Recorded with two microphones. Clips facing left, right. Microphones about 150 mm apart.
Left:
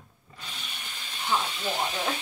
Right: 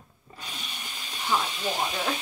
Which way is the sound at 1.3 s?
10° right (ahead or behind).